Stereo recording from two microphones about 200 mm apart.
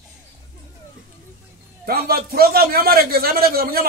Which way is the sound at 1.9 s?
50° right (ahead or behind).